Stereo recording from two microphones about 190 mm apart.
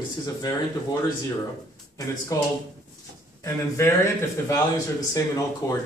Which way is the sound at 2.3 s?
15° left (ahead or behind).